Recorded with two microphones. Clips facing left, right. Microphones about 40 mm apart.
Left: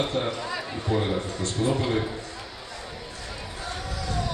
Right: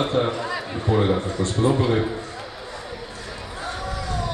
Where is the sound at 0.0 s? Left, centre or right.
Right.